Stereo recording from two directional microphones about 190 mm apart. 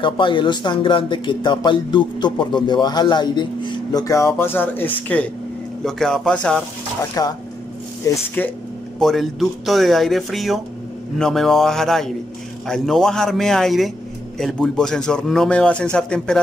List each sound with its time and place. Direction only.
0.0 s a man's voice: 25° left (ahead or behind); by 6.6 s 5° left (ahead or behind)
7.2 s speech: 20° left (ahead or behind)
9.0 s a man's voice: centre (ahead or behind)